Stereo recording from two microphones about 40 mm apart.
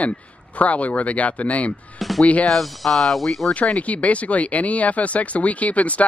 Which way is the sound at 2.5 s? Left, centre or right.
Centre.